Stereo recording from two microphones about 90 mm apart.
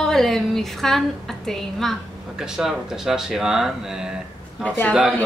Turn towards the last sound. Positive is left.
turn(degrees=-15)  # may be behind; listen again after turning